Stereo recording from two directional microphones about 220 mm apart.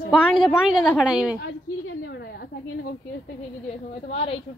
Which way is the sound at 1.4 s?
50° left (ahead or behind).